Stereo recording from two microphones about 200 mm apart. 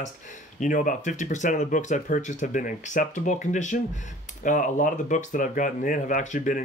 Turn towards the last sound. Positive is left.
turn(degrees=40)  # may be behind; listen again after turning